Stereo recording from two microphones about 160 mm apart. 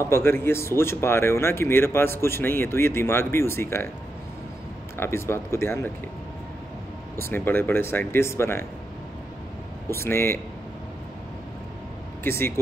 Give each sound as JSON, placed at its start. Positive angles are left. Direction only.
{"t": 0.0, "sound": "speech", "side_deg": 15}
{"t": 4.9, "sound": "speech", "side_deg": 15}
{"t": 7.2, "sound": "speech", "side_deg": 15}
{"t": 9.8, "sound": "speech", "side_deg": 15}
{"t": 12.2, "sound": "speech", "side_deg": 15}